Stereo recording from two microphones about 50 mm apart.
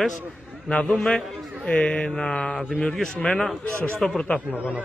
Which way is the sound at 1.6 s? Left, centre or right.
Left.